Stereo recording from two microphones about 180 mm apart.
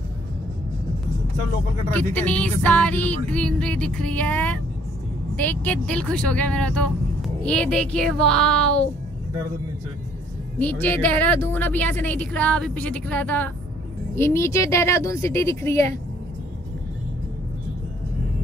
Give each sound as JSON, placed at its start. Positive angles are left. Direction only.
{"t": 2.0, "sound": "a woman's voice", "side_deg": 10}
{"t": 10.6, "sound": "a woman's voice", "side_deg": 10}